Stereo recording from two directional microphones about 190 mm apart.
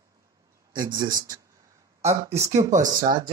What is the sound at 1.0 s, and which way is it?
Speech, 20° right (ahead or behind).